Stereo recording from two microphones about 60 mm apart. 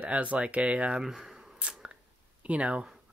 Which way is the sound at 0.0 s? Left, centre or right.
Right.